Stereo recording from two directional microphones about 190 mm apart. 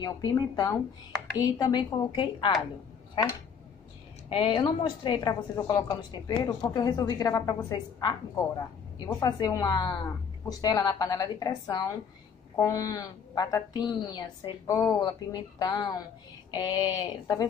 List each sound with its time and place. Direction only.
0.0 s a woman's voice: 20° left (ahead or behind)
4.3 s a woman's voice: 25° left (ahead or behind)